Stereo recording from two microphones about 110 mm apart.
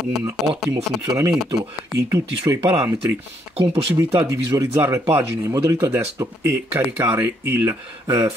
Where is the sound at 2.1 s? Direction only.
25° right (ahead or behind).